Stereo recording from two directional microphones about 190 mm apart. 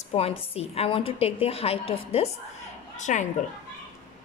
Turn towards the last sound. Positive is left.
turn(degrees=40)  # may be behind; listen again after turning